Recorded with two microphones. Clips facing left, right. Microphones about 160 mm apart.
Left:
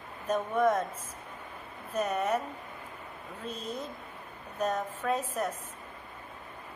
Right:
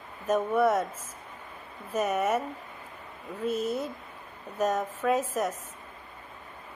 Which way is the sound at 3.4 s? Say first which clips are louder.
Right 9 dB; 10° right (ahead or behind).